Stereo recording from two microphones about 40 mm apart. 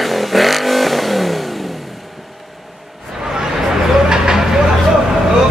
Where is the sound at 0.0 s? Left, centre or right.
Centre.